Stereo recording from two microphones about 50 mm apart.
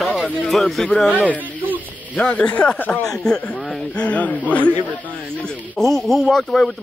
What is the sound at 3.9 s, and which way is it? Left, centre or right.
Speech, left.